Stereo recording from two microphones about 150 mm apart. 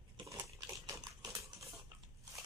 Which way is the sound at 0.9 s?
20° right (ahead or behind).